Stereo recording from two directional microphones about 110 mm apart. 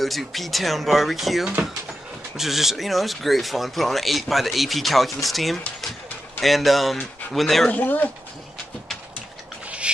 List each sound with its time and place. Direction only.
0.0 s speech: centre (ahead or behind)
7.7 s speech: 15° left (ahead or behind)
9.7 s a sound: 10° right (ahead or behind)